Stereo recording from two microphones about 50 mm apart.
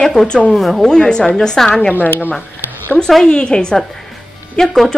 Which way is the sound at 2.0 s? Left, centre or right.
Left.